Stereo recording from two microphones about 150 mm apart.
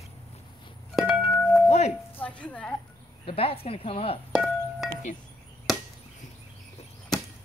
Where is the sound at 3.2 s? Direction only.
40° left (ahead or behind).